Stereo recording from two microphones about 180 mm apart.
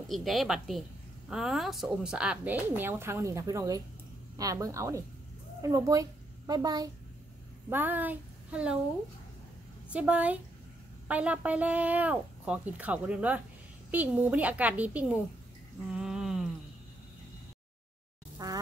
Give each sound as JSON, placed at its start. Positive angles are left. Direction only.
{"t": 0.1, "sound": "a woman's voice", "side_deg": 0}
{"t": 7.7, "sound": "speech", "side_deg": -10}
{"t": 9.8, "sound": "speech", "side_deg": -5}
{"t": 15.9, "sound": "a sound", "side_deg": -5}
{"t": 18.4, "sound": "a woman's voice", "side_deg": -20}